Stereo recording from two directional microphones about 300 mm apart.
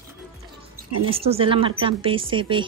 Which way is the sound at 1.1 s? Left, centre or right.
Centre.